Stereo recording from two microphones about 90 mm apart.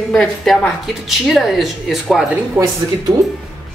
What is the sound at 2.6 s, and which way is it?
Speech, 20° right (ahead or behind).